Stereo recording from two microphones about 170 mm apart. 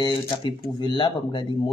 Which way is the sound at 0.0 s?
30° left (ahead or behind).